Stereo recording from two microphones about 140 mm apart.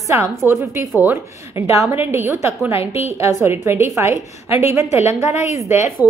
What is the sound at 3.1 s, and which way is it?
Speech, 20° right (ahead or behind).